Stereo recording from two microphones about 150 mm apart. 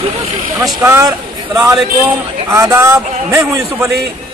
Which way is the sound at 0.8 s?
20° right (ahead or behind).